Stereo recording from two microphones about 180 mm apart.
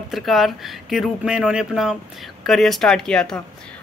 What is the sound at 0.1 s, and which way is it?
A woman's voice, centre (ahead or behind).